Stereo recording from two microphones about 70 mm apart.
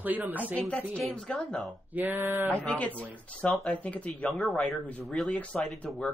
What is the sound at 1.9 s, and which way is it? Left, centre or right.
Speech, right.